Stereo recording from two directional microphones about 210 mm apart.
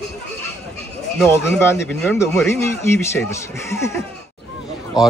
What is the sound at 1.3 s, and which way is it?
Speech, 10° left (ahead or behind).